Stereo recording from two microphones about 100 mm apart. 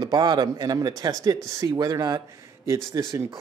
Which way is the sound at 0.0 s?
45° right (ahead or behind).